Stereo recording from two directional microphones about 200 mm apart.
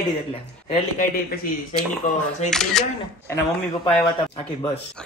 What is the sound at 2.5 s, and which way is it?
Speech, centre (ahead or behind).